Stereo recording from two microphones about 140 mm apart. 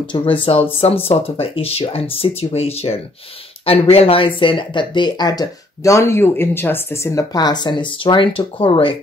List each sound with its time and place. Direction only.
0.0 s speech: 35° left (ahead or behind)